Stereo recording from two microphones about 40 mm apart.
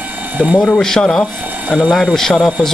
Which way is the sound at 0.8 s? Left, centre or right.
Centre.